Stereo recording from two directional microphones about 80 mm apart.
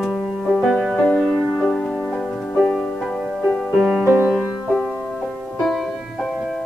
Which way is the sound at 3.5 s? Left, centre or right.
Centre.